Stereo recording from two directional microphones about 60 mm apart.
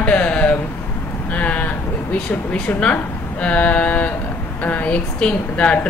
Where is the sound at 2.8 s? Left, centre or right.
Left.